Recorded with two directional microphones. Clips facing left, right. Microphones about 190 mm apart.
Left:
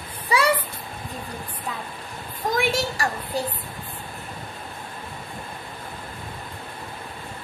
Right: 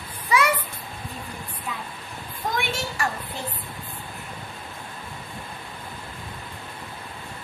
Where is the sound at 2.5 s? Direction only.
40° left (ahead or behind).